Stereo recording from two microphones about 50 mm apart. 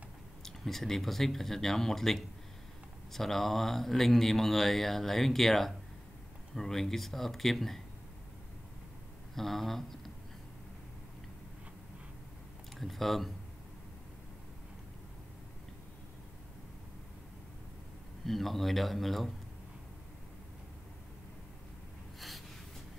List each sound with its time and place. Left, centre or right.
0.4 s speech: centre
9.3 s speech: centre
12.7 s speech: centre
18.2 s speech: centre